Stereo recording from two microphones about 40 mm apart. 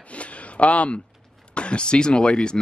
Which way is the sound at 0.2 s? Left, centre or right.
Left.